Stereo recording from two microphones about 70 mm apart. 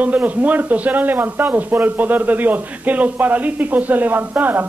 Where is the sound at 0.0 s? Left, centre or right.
Right.